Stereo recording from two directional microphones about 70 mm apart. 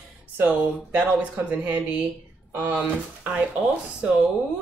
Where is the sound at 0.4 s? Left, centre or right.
Right.